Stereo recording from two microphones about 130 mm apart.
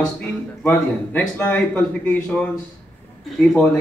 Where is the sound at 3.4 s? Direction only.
5° left (ahead or behind).